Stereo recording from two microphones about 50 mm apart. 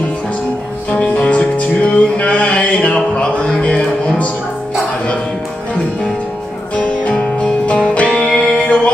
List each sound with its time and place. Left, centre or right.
1.0 s music: left
6.7 s music: left